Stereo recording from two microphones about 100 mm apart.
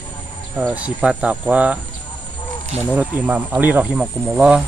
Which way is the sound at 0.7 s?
10° right (ahead or behind).